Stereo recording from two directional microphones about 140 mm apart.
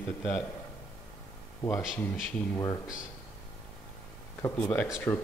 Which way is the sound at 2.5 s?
25° left (ahead or behind).